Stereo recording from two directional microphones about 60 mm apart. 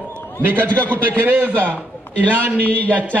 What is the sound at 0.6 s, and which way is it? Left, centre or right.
Speech, left.